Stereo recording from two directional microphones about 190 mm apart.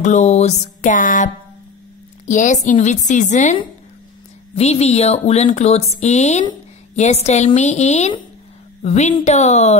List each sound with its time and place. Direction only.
0.0 s speech: 40° left (ahead or behind)
4.6 s speech: 35° left (ahead or behind)